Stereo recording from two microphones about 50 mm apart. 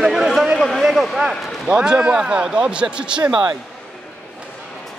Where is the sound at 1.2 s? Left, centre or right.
Centre.